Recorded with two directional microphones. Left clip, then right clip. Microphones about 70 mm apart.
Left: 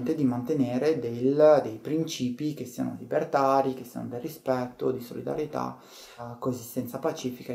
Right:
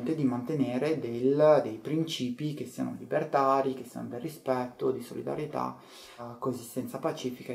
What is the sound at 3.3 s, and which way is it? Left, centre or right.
Speech, centre.